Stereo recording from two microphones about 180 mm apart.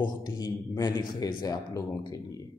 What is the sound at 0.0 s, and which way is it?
A man's voice, 25° left (ahead or behind).